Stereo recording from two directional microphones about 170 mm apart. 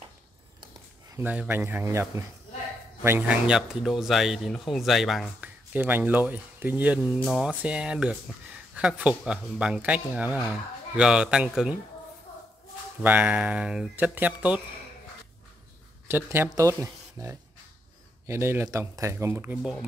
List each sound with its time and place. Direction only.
1.1 s speech: 10° right (ahead or behind)
13.0 s speech: 10° right (ahead or behind)
16.1 s speech: 15° right (ahead or behind)